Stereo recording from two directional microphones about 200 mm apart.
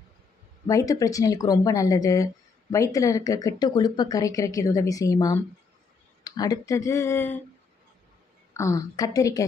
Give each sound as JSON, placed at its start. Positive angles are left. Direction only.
{"t": 0.7, "sound": "speech", "side_deg": 15}
{"t": 8.5, "sound": "speech", "side_deg": 15}